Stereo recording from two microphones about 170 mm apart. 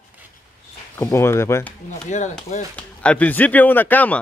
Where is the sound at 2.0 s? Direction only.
45° left (ahead or behind).